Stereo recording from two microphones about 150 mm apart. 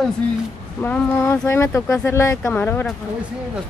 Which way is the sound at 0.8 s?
15° left (ahead or behind).